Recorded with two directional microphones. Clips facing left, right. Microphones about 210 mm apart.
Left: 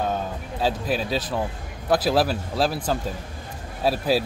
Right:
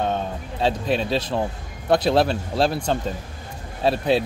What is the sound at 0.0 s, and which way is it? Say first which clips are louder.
Music: right 2 dB; 5° left (ahead or behind).